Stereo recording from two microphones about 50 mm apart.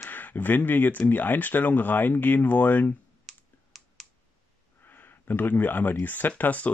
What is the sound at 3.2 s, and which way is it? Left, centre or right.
Computer keyboard, centre.